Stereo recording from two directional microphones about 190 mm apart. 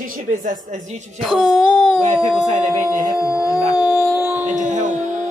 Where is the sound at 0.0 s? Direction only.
45° right (ahead or behind).